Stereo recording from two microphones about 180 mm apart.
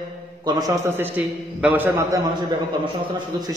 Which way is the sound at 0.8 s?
10° right (ahead or behind).